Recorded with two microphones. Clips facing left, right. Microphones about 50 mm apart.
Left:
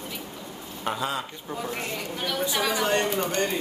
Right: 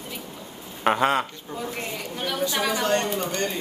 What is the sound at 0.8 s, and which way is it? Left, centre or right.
Speech, right.